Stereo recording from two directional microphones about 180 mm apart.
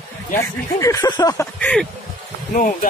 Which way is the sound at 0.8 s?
20° left (ahead or behind).